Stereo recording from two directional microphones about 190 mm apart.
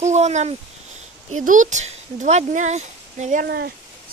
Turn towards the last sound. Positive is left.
turn(degrees=-40)  # may be behind; listen again after turning